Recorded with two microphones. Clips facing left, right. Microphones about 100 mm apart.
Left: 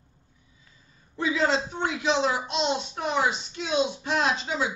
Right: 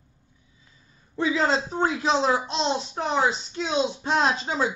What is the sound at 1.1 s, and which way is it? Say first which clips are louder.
Speech: right 2 dB; 30° right (ahead or behind).